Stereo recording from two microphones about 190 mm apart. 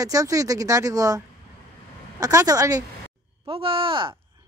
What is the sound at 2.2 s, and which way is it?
A woman's voice, 20° right (ahead or behind).